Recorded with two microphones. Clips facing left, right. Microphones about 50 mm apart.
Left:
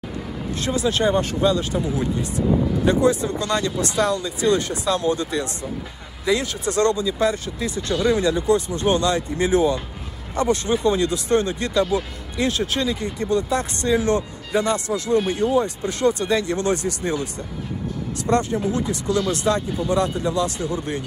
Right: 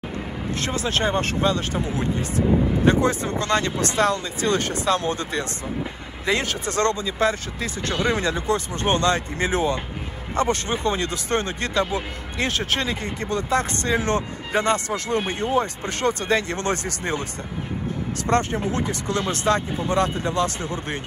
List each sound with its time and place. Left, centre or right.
0.7 s speech: right